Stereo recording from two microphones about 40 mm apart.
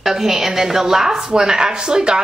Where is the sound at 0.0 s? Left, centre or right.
Centre.